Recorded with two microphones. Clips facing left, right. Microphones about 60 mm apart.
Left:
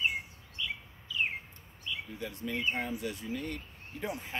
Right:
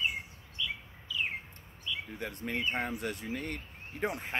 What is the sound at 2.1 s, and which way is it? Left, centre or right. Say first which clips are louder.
Speech: even; right.